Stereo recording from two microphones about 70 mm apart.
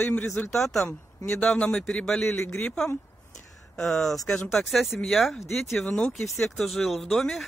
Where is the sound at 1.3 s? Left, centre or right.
Centre.